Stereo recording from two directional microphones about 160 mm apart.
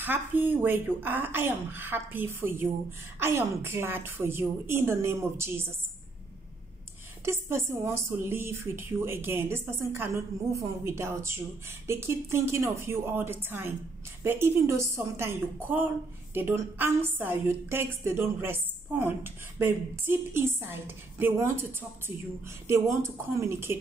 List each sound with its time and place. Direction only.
0.0 s a woman's voice: 10° right (ahead or behind)
7.2 s a woman's voice: 15° right (ahead or behind)